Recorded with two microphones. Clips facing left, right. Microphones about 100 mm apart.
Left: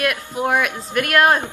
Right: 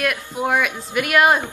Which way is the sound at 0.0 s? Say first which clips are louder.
Left 1 dB; centre (ahead or behind).